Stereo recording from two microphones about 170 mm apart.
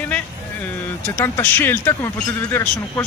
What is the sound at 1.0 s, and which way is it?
Speech, 15° left (ahead or behind).